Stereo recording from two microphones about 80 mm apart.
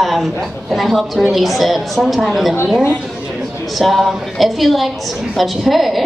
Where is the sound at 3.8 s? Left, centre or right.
Centre.